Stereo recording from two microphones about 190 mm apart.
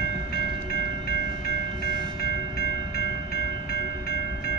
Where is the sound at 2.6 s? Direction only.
50° left (ahead or behind).